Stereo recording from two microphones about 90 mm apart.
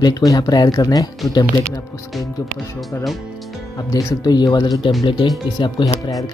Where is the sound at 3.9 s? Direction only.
40° left (ahead or behind).